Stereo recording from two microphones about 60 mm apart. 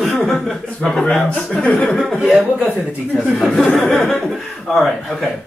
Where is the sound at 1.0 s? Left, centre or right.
Centre.